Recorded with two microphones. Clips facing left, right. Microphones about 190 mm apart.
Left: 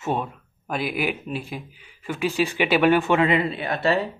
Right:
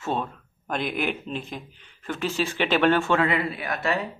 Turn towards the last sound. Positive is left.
turn(degrees=30)  # may be behind; listen again after turning